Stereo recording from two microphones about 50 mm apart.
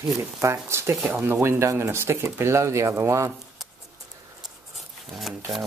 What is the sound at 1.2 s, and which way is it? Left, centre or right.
Speech, right.